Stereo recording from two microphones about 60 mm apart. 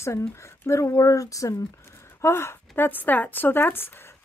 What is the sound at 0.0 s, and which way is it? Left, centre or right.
Speech, left.